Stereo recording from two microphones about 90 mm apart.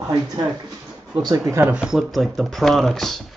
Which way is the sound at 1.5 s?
25° right (ahead or behind).